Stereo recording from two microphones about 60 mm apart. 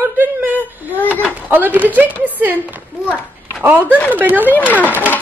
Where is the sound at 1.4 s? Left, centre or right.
Right.